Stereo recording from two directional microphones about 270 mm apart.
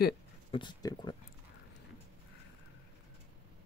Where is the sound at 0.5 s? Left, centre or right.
Centre.